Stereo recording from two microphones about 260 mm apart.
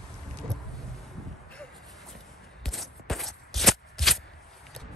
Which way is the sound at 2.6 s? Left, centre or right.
Centre.